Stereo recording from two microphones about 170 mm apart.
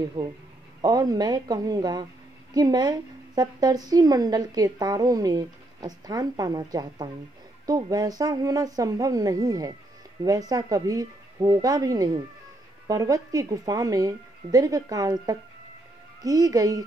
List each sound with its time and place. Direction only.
0.2 s a woman's voice: 25° right (ahead or behind)